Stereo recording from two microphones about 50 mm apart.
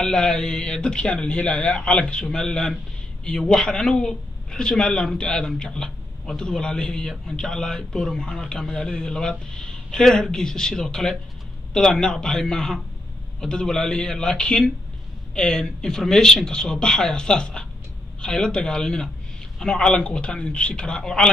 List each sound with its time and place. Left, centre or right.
0.0 s a man's voice: centre